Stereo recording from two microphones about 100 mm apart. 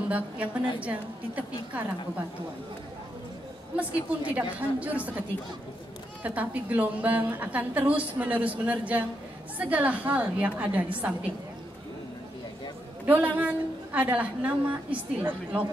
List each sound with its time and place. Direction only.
0.7 s a woman's voice: 15° right (ahead or behind)
3.7 s a woman's voice: 15° right (ahead or behind)
6.2 s a woman's voice: 15° right (ahead or behind)
13.0 s a woman's voice: 15° right (ahead or behind)